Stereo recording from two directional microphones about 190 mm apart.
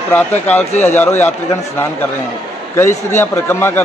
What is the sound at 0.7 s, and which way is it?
Speech, 35° left (ahead or behind).